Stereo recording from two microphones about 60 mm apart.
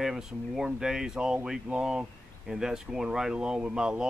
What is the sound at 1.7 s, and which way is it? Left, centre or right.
Speech, right.